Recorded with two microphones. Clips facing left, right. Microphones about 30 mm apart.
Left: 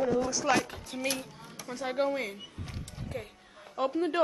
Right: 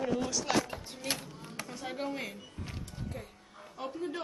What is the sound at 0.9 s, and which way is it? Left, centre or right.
Speech, left.